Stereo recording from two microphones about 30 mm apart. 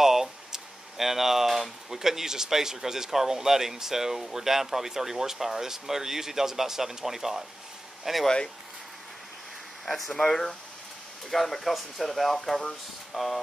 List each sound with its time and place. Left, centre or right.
0.0 s a sound: centre
2.0 s speech: centre
10.1 s speech: centre
11.2 s speech: centre